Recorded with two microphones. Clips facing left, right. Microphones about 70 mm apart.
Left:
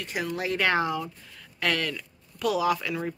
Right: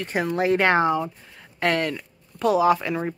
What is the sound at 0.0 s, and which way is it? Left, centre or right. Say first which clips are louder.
Speech: right 7 dB; right.